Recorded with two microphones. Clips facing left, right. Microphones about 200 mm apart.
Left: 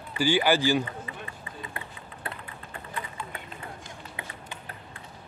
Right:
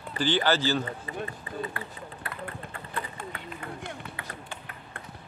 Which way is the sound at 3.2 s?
50° right (ahead or behind).